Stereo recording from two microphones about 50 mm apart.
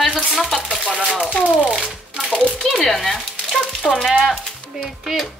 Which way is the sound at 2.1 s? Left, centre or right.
Centre.